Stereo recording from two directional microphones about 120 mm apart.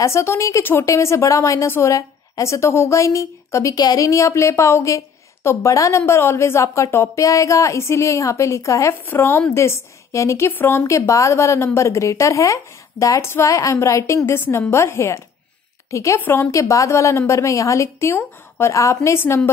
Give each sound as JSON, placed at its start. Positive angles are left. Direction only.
{"t": 0.0, "sound": "a woman's voice", "side_deg": 20}